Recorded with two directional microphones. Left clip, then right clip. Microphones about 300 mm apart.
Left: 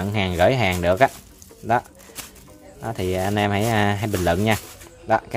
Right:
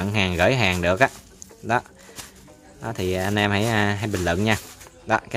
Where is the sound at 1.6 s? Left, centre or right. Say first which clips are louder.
Left 2 dB; centre.